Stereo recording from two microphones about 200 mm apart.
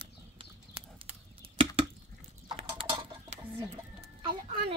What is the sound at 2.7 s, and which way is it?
Tick-tock, 20° right (ahead or behind).